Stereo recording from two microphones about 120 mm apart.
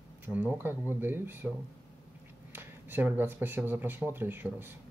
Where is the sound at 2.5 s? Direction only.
15° right (ahead or behind).